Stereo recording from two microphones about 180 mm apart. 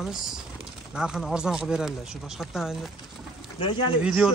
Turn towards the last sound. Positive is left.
turn(degrees=-5)  # may be behind; listen again after turning